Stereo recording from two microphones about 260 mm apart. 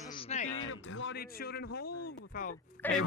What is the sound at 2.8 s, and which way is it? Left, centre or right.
Speech, centre.